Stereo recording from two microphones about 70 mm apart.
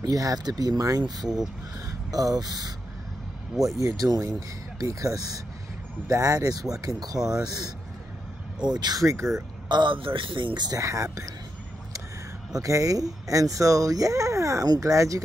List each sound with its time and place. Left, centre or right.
0.0 s speech: right
3.8 s speech: right
8.6 s speech: right
9.0 s speech: right
9.7 s speech: right
10.1 s speech: right
10.5 s speech: right
10.8 s speech: right
12.5 s speech: right